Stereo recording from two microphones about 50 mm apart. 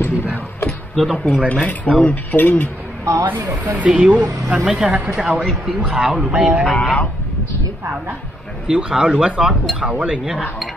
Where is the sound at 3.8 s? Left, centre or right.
Centre.